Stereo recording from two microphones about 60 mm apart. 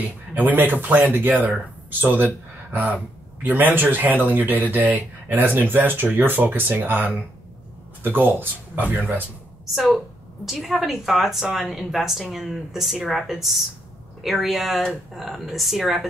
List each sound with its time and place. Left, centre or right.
0.3 s speech: right
9.7 s a woman's voice: centre